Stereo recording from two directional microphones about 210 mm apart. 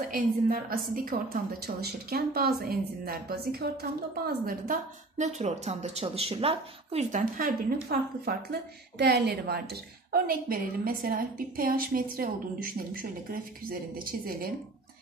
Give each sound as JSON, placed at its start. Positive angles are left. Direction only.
{"t": 0.1, "sound": "a woman's voice", "side_deg": -45}